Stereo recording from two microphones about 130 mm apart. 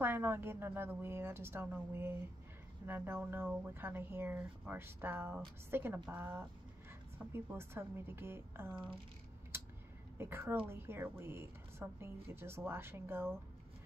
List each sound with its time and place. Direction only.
0.0 s a woman's voice: 15° right (ahead or behind)
9.5 s a sound: 20° right (ahead or behind)
10.1 s a woman's voice: 20° right (ahead or behind)